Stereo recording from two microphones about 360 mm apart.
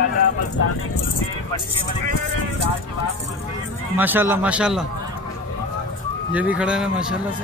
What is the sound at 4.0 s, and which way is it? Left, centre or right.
Speech, centre.